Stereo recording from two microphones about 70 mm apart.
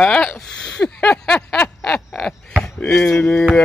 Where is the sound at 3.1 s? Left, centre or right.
Left.